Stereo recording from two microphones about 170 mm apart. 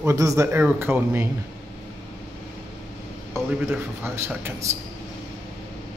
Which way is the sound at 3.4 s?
15° right (ahead or behind).